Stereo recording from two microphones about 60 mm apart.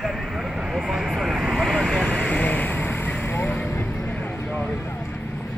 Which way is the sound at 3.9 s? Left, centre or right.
Centre.